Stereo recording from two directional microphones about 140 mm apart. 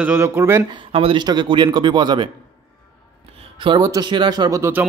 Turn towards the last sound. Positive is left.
turn(degrees=-15)  # may be behind; listen again after turning